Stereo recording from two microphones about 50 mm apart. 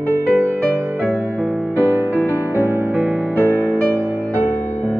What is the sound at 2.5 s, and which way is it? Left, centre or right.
Music, right.